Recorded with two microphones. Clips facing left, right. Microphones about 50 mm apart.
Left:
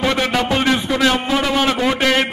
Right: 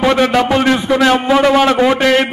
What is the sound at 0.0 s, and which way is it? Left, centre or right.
A man's voice, centre.